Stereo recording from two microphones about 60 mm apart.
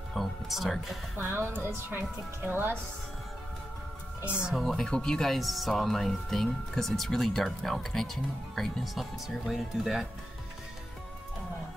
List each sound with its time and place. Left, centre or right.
0.1 s speech: centre
1.1 s a woman's voice: right
4.5 s speech: centre
4.8 s speech: centre